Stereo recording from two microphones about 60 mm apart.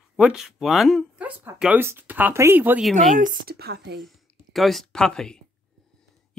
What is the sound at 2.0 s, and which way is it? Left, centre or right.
Speech, right.